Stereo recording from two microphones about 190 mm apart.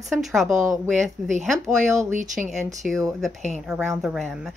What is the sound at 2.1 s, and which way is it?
Speech, 40° right (ahead or behind).